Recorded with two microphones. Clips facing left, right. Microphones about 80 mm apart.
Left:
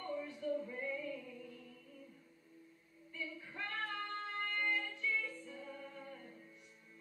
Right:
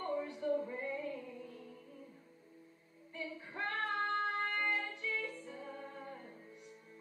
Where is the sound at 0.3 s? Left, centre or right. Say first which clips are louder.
Right 4 dB; right.